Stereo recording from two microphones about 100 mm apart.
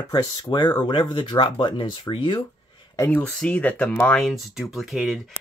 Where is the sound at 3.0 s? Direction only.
20° left (ahead or behind).